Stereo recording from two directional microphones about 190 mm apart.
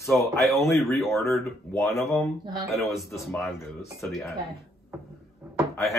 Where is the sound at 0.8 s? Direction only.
Centre (ahead or behind).